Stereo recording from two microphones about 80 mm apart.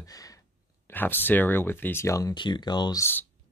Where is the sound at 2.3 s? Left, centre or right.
Left.